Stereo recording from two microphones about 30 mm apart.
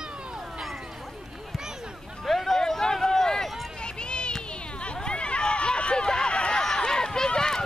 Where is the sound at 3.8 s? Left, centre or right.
Left.